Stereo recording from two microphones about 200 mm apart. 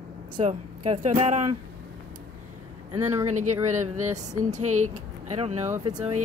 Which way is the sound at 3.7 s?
35° right (ahead or behind).